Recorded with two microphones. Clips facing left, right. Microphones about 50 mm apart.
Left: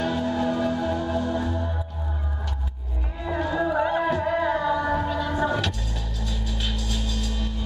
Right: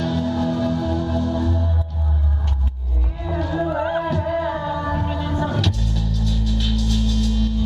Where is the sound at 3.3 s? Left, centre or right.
Centre.